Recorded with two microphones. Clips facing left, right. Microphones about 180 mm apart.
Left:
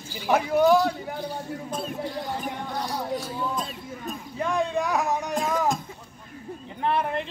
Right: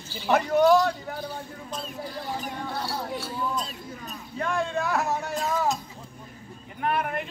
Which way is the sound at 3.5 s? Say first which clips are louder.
Left 1 dB; 50° left (ahead or behind).